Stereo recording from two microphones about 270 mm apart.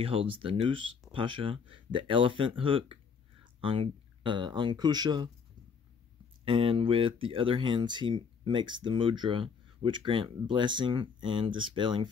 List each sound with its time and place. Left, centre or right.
0.0 s speech: right
6.4 s speech: centre